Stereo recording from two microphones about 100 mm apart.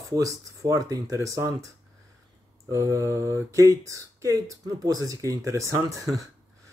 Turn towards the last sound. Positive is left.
turn(degrees=-30)  # may be behind; listen again after turning